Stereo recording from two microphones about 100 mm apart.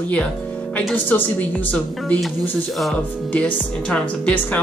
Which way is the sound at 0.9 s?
15° left (ahead or behind).